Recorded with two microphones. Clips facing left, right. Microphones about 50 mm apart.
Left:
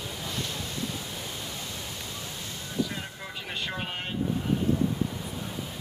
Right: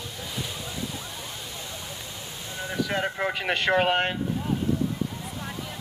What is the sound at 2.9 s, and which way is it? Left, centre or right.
Speech, right.